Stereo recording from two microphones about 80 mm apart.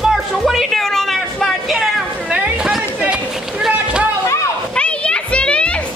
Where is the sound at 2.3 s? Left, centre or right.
Centre.